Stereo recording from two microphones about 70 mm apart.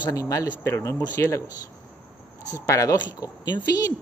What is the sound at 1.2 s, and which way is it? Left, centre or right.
Speech, left.